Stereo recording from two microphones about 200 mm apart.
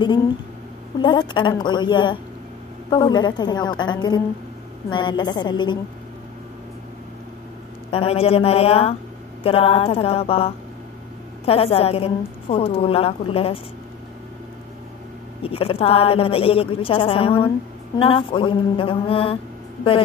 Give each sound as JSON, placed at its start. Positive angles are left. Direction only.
{"t": 1.0, "sound": "a woman's voice", "side_deg": 20}
{"t": 7.9, "sound": "a woman's voice", "side_deg": 30}
{"t": 15.4, "sound": "a woman's voice", "side_deg": 30}